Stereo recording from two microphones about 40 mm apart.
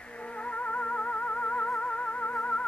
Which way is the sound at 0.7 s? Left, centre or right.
Left.